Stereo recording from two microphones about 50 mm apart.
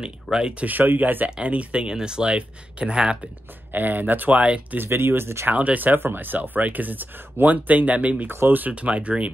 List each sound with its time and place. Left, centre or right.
0.0 s speech: centre
0.7 s speech: right
1.3 s speech: right
3.7 s speech: right
4.4 s speech: right
4.7 s speech: right
5.5 s speech: right
8.3 s speech: right
8.7 s speech: right